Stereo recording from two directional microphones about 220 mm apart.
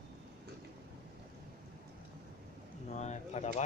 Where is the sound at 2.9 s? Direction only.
30° left (ahead or behind).